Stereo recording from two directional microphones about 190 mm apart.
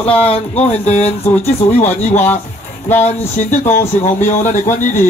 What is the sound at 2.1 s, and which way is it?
Speech, 10° left (ahead or behind).